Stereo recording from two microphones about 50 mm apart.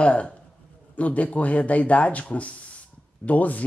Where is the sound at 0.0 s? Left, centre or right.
Left.